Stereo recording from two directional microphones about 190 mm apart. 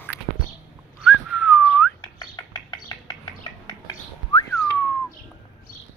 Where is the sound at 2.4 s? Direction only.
20° left (ahead or behind).